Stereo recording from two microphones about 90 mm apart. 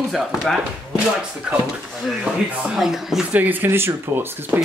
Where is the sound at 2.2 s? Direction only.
5° right (ahead or behind).